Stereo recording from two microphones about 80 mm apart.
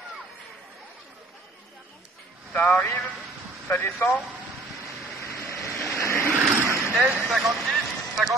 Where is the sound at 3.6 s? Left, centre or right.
Left.